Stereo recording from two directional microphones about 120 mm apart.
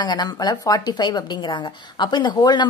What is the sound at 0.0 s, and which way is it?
A woman's voice, 35° left (ahead or behind).